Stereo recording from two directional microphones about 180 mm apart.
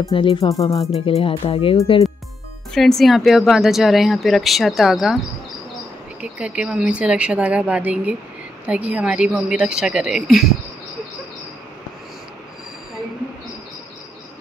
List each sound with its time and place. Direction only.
0.1 s speech: 30° left (ahead or behind)
1.0 s speech: 30° left (ahead or behind)
2.7 s speech: centre (ahead or behind)
6.2 s a woman's voice: 5° right (ahead or behind)